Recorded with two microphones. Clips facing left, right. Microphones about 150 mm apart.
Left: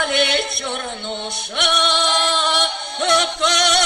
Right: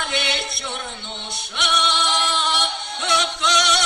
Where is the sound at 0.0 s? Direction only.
55° left (ahead or behind).